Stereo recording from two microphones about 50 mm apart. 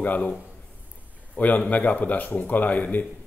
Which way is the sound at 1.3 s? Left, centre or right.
Left.